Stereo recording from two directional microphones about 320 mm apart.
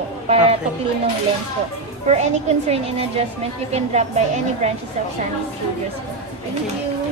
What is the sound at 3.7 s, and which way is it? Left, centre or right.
Speech, right.